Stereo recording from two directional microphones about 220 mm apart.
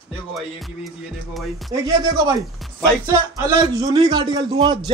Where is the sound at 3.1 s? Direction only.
15° right (ahead or behind).